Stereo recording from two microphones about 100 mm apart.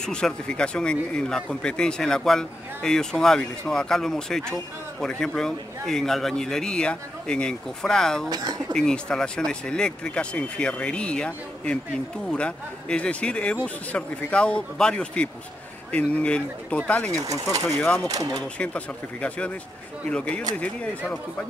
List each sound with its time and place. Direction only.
0.0 s a man's voice: 10° left (ahead or behind)
8.3 s speech: 45° right (ahead or behind)
8.7 s speech: 5° left (ahead or behind)
17.2 s speech: 35° right (ahead or behind)
17.6 s a man's voice: 5° left (ahead or behind)
18.0 s speech: 40° right (ahead or behind)
18.4 s speech: 10° left (ahead or behind)